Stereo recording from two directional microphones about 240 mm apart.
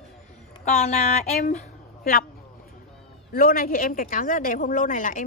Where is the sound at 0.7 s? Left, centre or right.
Left.